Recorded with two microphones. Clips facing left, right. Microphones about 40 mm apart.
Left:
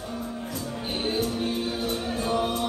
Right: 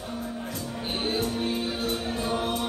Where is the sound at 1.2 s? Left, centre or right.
Centre.